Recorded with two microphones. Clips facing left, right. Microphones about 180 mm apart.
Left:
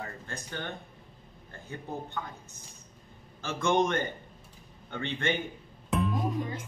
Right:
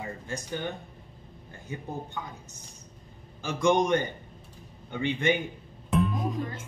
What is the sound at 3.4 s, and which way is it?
A man's voice, 15° right (ahead or behind).